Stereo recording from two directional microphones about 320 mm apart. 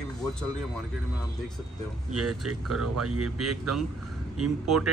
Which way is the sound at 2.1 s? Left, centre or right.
Right.